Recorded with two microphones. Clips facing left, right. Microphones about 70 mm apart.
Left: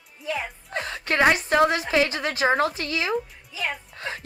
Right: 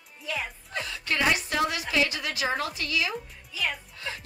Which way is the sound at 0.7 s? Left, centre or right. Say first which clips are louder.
Left 5 dB; left.